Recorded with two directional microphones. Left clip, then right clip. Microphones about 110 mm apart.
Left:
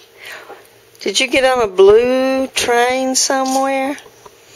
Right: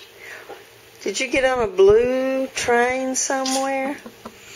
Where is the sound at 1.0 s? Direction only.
45° left (ahead or behind).